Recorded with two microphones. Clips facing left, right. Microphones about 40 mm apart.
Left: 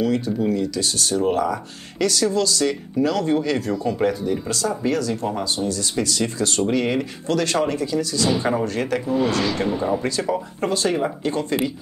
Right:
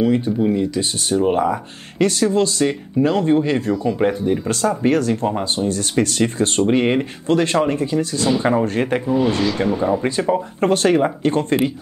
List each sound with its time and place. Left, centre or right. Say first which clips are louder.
0.0 s speech: right 4 dB; right
2.0 s speech: right 4 dB; right
8.4 s speech: right 4 dB; right
9.7 s speech: right 4 dB; centre
10.0 s speech: right 4 dB; right
10.6 s speech: right 7 dB; right